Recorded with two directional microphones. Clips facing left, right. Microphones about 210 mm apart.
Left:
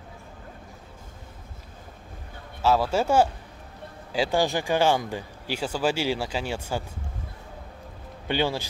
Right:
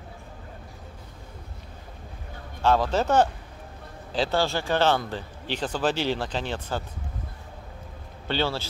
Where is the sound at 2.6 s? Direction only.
5° left (ahead or behind).